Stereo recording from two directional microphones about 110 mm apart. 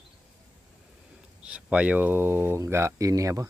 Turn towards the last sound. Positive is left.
turn(degrees=-30)  # may be behind; listen again after turning